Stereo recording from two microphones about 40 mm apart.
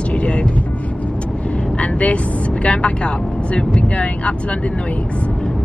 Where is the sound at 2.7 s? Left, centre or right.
Left.